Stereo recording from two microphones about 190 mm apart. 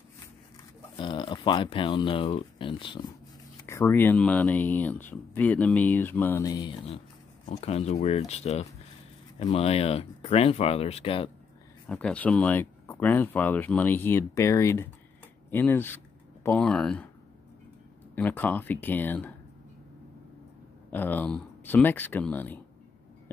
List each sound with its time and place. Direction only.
0.9 s speech: 25° left (ahead or behind)
3.6 s speech: 15° left (ahead or behind)
7.4 s speech: 35° left (ahead or behind)
11.9 s speech: 5° left (ahead or behind)
18.1 s speech: 10° left (ahead or behind)
20.9 s speech: 10° left (ahead or behind)